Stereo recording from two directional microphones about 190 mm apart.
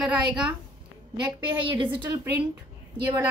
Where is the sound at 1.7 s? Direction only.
25° right (ahead or behind).